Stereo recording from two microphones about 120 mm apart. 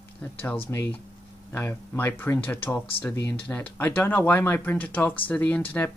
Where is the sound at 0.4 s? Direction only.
20° left (ahead or behind).